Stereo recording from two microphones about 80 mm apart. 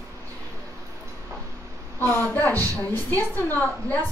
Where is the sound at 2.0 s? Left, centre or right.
Left.